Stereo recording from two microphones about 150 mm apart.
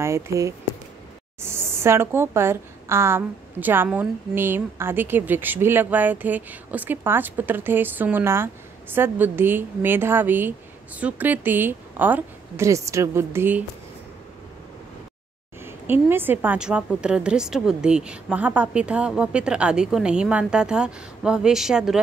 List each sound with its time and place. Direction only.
0.0 s a woman's voice: 20° right (ahead or behind)
15.6 s a woman's voice: 15° right (ahead or behind)